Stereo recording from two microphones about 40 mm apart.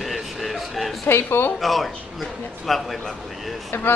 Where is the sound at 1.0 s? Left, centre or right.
Left.